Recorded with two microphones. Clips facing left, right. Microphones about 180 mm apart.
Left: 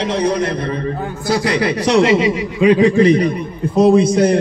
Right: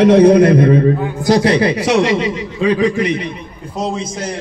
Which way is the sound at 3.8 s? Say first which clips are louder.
Left 11 dB; 60° left (ahead or behind).